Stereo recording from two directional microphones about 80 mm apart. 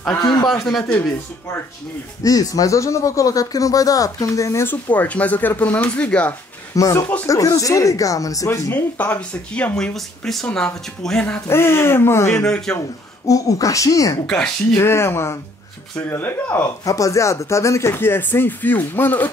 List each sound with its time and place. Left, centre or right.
0.2 s a man's voice: left
0.5 s speech: centre
2.2 s speech: left
4.6 s speech: centre
6.7 s speech: left
8.7 s speech: left
9.9 s speech: centre
11.4 s speech: left
12.4 s speech: centre
13.3 s speech: left
14.2 s speech: centre
14.8 s speech: left
16.8 s speech: left